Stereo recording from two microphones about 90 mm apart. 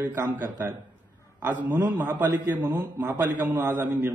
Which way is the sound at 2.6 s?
25° right (ahead or behind).